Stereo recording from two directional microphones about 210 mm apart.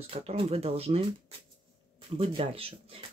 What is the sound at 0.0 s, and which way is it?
Speech, 30° right (ahead or behind).